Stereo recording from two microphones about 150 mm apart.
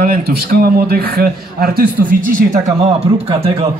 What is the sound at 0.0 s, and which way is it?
A man's voice, 80° right.